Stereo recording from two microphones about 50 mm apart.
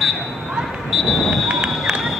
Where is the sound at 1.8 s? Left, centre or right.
Centre.